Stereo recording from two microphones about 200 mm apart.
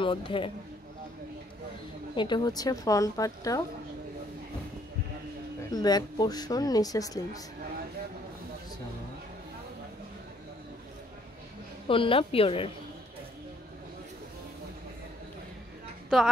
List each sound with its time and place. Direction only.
0.0 s speech: 25° left (ahead or behind)
2.1 s a woman's voice: 20° left (ahead or behind)
5.7 s speech: 20° left (ahead or behind)
11.9 s speech: 25° left (ahead or behind)